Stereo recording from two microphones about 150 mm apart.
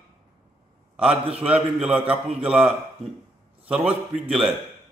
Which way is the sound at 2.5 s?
5° right (ahead or behind).